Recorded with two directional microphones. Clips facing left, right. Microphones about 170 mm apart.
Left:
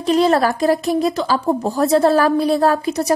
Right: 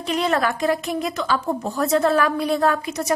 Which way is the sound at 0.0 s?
35° left (ahead or behind).